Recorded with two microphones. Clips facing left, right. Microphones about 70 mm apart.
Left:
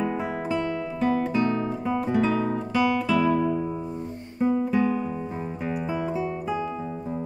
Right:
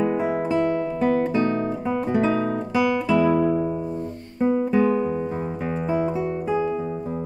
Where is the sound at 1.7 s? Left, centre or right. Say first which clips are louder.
Right 2 dB; centre.